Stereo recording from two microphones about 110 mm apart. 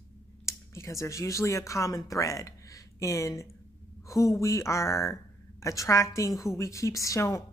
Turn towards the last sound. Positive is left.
turn(degrees=30)  # may be behind; listen again after turning